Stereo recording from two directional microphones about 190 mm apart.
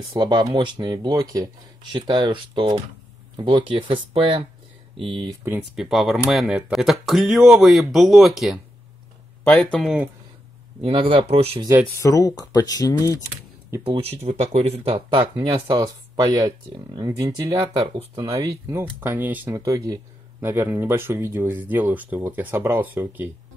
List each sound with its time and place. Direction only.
0.2 s speech: 20° right (ahead or behind)
5.4 s speech: 5° right (ahead or behind)
10.8 s speech: 30° right (ahead or behind)
12.0 s speech: 20° left (ahead or behind)
13.8 s speech: 30° right (ahead or behind); by 23.3 s 10° right (ahead or behind)